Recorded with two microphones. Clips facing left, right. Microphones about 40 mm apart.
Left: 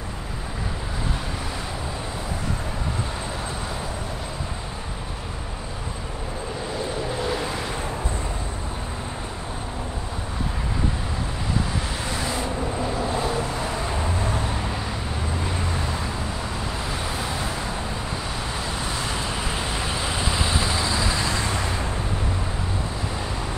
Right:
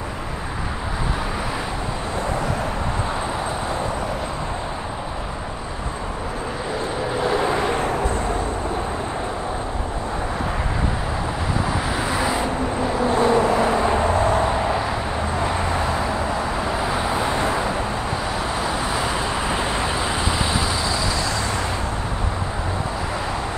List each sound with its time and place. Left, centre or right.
7.2 s vehicle: centre
7.4 s vehicle: right
12.0 s vehicle: centre
13.1 s vehicle: right; by 17.3 s centre
17.3 s vehicle: right
18.9 s vehicle: centre